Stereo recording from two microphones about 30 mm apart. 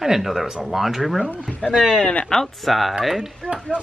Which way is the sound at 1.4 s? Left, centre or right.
Centre.